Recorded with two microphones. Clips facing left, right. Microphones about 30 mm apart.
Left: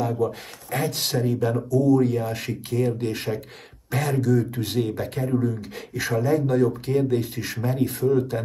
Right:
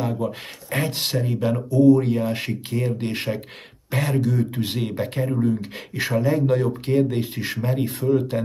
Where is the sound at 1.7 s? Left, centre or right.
Right.